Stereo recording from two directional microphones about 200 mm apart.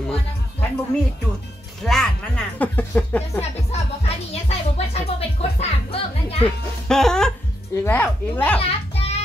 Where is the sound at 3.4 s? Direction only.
30° left (ahead or behind).